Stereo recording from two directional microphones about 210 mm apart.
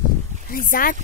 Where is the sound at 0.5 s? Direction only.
40° left (ahead or behind).